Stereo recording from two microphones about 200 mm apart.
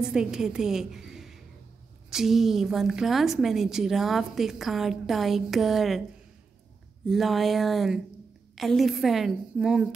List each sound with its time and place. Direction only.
0.1 s a woman's voice: 5° right (ahead or behind)
7.1 s a woman's voice: centre (ahead or behind)